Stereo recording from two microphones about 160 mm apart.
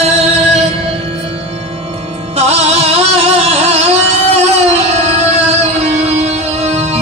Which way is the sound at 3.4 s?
40° right (ahead or behind).